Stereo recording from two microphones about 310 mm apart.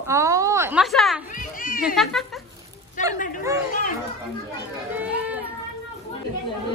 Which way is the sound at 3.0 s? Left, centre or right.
Left.